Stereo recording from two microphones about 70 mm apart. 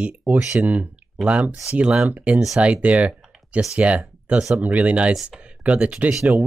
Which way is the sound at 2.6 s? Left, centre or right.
Centre.